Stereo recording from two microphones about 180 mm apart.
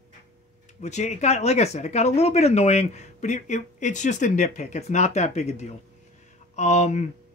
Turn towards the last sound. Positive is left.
turn(degrees=40)  # may be behind; listen again after turning